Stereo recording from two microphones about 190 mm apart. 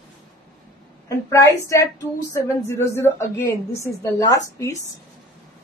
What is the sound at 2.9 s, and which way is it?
A woman's voice, 10° left (ahead or behind).